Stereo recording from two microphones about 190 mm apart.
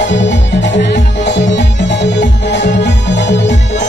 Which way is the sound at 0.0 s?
70° left (ahead or behind).